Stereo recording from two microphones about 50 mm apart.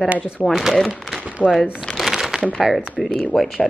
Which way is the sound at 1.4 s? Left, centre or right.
Right.